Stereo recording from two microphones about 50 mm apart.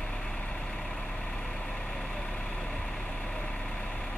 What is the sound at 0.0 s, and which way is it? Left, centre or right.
Vehicle, left.